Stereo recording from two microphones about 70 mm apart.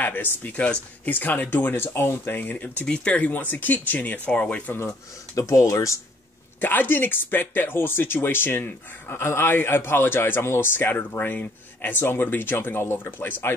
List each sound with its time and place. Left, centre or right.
0.0 s speech: left
4.7 s speech: left
6.6 s speech: left